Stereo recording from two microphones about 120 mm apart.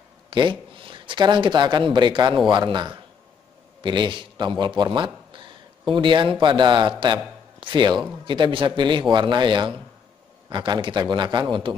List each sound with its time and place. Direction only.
0.3 s a man's voice: 45° right (ahead or behind)